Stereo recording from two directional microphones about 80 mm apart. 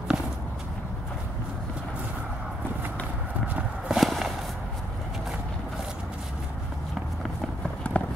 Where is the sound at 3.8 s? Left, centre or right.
Centre.